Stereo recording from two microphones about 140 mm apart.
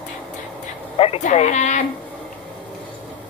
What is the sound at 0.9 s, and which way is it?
Speech, 45° left (ahead or behind).